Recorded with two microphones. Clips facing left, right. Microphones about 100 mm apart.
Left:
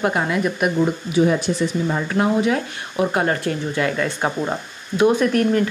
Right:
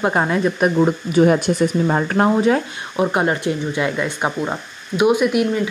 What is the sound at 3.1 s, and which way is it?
Speech, 20° right (ahead or behind).